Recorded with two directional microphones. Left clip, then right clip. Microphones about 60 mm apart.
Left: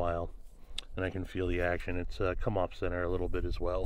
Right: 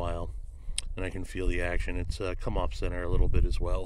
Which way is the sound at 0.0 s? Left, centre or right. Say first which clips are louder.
Left 2 dB; right.